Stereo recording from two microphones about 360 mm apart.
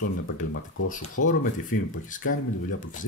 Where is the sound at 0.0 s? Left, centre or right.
Left.